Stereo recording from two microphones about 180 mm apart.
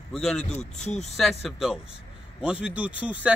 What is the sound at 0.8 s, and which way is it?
Speech, 40° left (ahead or behind).